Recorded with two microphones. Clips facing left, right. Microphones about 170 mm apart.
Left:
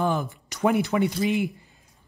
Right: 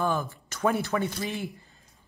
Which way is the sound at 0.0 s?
15° left (ahead or behind).